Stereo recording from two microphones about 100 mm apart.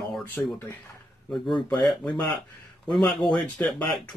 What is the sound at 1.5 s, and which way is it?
Speech, 45° left (ahead or behind).